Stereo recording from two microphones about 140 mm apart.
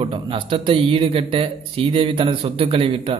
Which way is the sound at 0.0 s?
40° right (ahead or behind).